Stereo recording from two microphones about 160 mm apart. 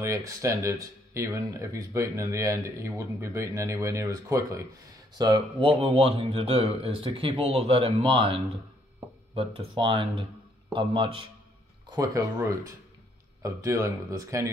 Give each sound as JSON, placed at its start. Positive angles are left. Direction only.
{"t": 0.0, "sound": "a man's voice", "side_deg": -20}
{"t": 11.9, "sound": "speech", "side_deg": -20}